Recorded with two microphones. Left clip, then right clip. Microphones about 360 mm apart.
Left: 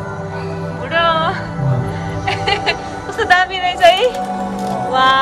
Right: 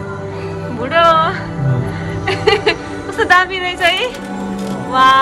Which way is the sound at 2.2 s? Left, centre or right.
Centre.